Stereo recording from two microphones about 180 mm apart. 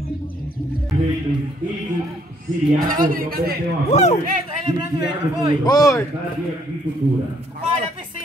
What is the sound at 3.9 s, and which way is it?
Speech, 40° left (ahead or behind).